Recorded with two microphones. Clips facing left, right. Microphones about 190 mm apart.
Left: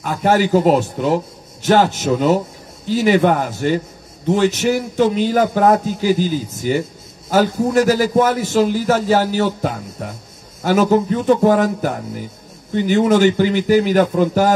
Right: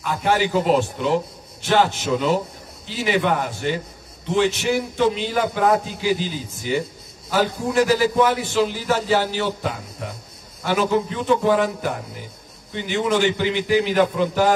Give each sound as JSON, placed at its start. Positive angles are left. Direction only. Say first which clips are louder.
{"t": 0.0, "sound": "a man's voice", "louder": "left 5 dB", "side_deg": 40}